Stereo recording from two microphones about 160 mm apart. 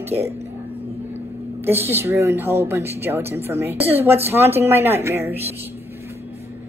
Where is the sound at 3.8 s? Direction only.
40° right (ahead or behind).